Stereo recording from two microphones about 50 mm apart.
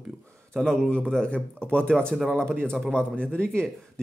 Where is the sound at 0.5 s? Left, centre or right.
Centre.